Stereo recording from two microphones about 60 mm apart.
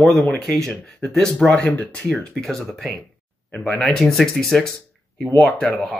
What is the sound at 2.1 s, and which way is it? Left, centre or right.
Speech, centre.